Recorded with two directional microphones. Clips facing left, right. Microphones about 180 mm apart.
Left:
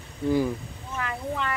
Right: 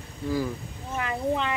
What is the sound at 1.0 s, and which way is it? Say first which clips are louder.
Speech: right 4 dB; 20° right (ahead or behind).